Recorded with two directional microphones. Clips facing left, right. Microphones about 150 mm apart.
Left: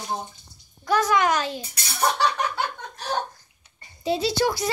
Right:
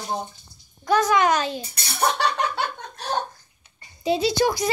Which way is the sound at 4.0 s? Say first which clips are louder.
Right 2 dB; 15° right (ahead or behind).